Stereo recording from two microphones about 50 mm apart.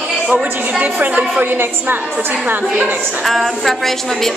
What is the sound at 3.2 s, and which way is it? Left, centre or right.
A woman's voice, centre.